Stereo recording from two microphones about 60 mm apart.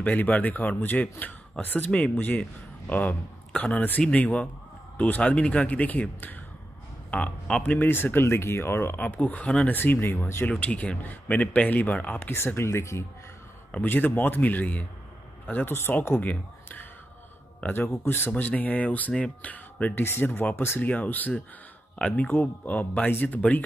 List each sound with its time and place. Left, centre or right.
0.0 s a man's voice: left
7.7 s speech: left
9.0 s speech: left
10.6 s speech: left
12.2 s speech: left
13.7 s a man's voice: left
18.0 s speech: left
18.3 s speech: left
19.1 s speech: centre
19.5 s speech: left
20.1 s speech: left
20.8 s speech: left